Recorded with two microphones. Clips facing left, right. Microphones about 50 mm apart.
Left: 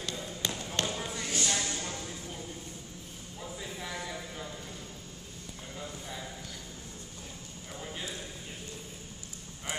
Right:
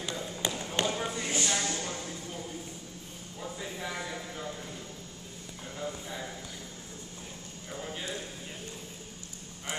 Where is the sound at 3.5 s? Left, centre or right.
Centre.